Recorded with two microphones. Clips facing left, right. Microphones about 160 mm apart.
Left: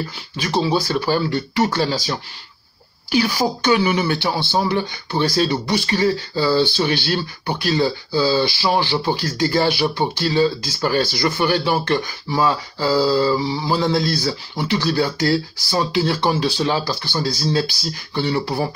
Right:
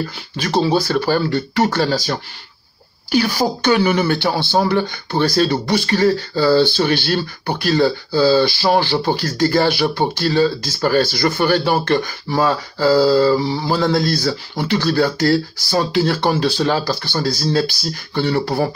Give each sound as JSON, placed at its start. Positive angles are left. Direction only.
{"t": 0.8, "sound": "speech", "side_deg": -50}